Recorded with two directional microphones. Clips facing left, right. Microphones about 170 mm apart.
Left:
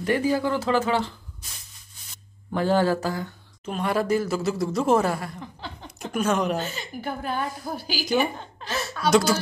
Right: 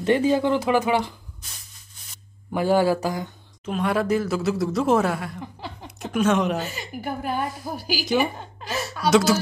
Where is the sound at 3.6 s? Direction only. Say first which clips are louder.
Right 2 dB; centre (ahead or behind).